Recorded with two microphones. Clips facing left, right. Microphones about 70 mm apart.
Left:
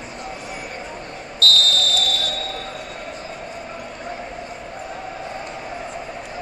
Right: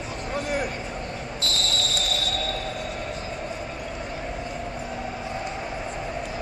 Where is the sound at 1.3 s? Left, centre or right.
Right.